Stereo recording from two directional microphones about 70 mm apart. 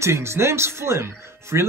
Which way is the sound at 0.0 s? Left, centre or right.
Right.